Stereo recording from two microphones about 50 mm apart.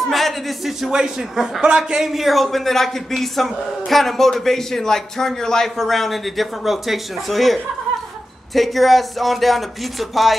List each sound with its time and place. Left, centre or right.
0.1 s a man's voice: centre